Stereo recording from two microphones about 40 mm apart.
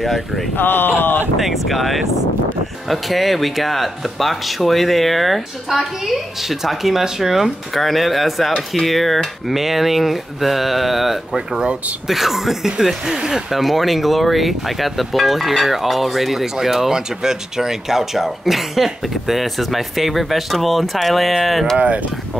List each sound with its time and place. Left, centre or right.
0.0 s speech: centre
0.6 s speech: left
1.4 s speech: centre
7.7 s speech: centre
11.3 s speech: centre
12.1 s speech: centre
21.7 s speech: right